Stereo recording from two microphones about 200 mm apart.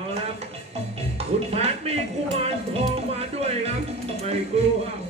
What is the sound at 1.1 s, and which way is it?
Speech, 30° right (ahead or behind).